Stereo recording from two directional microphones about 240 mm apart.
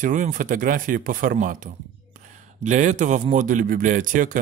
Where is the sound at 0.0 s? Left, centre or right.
Right.